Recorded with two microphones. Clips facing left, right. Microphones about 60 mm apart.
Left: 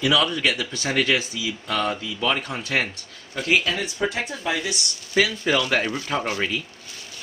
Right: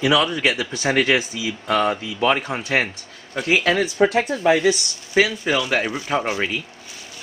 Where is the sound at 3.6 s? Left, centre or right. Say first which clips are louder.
Right 8 dB; right.